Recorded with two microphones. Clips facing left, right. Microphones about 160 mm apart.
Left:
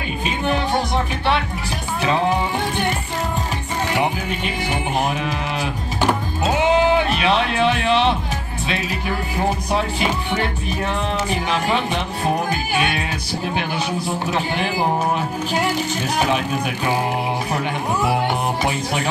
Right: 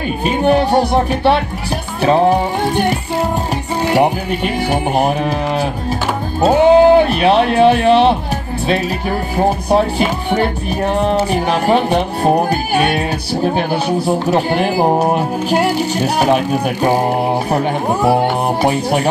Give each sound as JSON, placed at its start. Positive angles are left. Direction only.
{"t": 0.2, "sound": "music", "side_deg": -40}
{"t": 2.0, "sound": "music", "side_deg": -40}
{"t": 3.9, "sound": "speech", "side_deg": -45}
{"t": 5.0, "sound": "music", "side_deg": -40}
{"t": 6.4, "sound": "speech", "side_deg": -35}
{"t": 9.4, "sound": "music", "side_deg": -40}
{"t": 14.3, "sound": "speech", "side_deg": -45}
{"t": 17.5, "sound": "music", "side_deg": -35}